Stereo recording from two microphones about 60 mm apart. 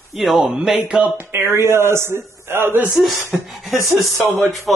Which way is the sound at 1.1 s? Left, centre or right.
Right.